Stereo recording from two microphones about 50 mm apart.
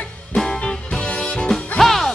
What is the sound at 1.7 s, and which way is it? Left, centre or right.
Music, centre.